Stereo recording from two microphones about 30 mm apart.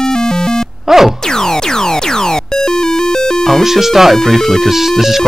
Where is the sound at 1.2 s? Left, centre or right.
Centre.